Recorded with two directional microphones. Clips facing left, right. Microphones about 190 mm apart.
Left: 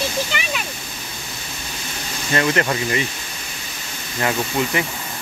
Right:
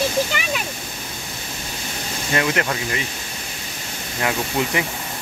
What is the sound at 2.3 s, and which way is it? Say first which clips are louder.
Speech: left 2 dB; 10° right (ahead or behind).